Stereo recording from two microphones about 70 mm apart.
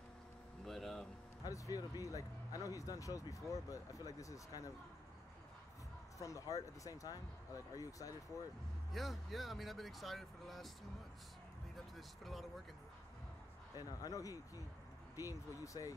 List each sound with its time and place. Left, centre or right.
0.7 s a sound: centre
1.4 s speech: left
6.1 s speech: left
8.9 s speech: centre
12.3 s speech: centre
13.7 s speech: left